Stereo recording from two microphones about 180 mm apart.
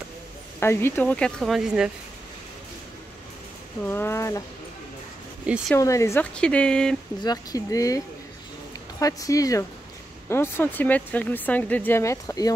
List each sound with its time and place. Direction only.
0.6 s speech: 15° left (ahead or behind)
3.8 s speech: 10° left (ahead or behind)
5.5 s speech: 5° right (ahead or behind)
5.8 s speech: 15° left (ahead or behind)
7.2 s speech: 20° left (ahead or behind)
9.0 s speech: 20° left (ahead or behind)